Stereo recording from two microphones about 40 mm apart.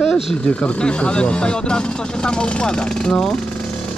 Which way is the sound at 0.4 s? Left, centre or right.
Left.